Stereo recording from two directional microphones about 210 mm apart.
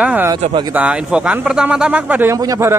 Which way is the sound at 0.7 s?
5° right (ahead or behind).